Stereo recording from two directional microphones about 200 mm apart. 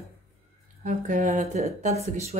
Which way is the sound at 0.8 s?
40° right (ahead or behind).